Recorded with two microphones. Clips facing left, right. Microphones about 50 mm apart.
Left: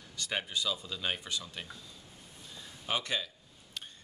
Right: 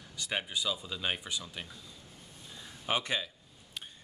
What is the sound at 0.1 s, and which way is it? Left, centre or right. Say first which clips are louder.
Speech: even; centre.